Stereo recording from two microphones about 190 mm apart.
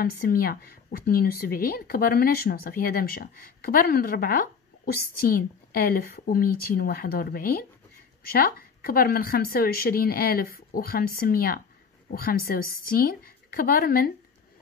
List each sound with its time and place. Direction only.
0.0 s speech: 50° left (ahead or behind)